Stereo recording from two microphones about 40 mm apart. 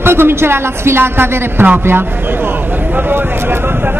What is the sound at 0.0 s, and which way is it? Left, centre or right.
A woman's voice, right.